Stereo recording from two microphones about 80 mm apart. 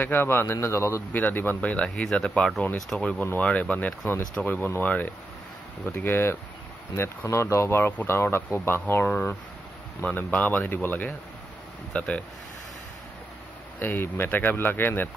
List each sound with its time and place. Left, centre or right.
0.0 s speech: left
1.1 s speech: left
7.0 s speech: left; by 12.3 s centre
13.7 s speech: left